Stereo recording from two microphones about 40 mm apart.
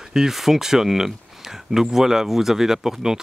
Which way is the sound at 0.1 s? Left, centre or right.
Centre.